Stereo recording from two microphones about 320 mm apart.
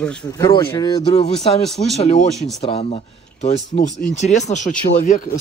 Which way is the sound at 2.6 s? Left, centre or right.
Centre.